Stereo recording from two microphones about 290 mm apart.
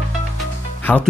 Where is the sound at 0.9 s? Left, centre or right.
Centre.